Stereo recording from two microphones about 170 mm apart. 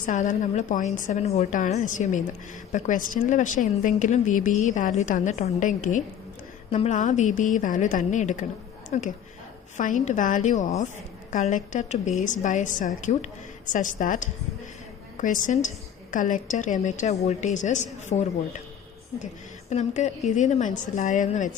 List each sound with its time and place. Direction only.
0.0 s a woman's voice: 50° left (ahead or behind)
19.7 s a woman's voice: 45° left (ahead or behind)